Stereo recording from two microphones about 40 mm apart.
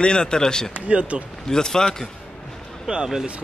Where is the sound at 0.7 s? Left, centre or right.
Right.